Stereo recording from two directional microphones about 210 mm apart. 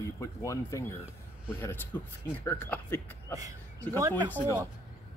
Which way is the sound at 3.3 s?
15° right (ahead or behind).